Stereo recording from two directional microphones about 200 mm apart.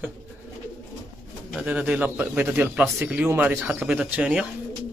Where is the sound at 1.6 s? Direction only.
5° right (ahead or behind).